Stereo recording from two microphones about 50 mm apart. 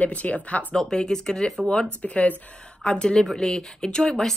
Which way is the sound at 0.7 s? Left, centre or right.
Centre.